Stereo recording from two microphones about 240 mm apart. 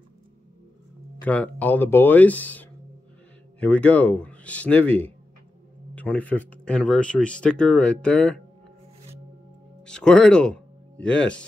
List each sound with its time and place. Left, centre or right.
1.2 s speech: centre
9.8 s speech: centre